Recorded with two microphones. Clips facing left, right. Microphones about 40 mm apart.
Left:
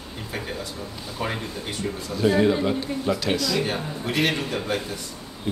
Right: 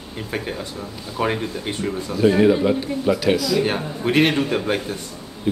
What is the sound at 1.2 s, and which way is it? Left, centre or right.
Speech, right.